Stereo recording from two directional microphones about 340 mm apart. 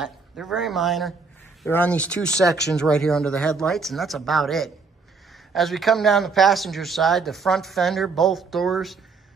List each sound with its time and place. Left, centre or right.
0.0 s speech: centre